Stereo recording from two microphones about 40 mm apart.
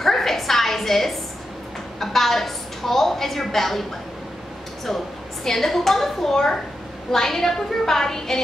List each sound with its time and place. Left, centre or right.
0.0 s a sound: centre
2.0 s a woman's voice: centre
4.8 s a woman's voice: centre